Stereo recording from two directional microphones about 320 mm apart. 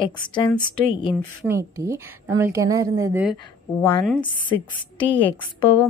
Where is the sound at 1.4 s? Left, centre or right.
Centre.